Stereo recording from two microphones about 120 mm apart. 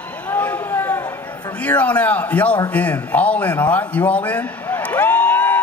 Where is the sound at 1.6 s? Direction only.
10° left (ahead or behind).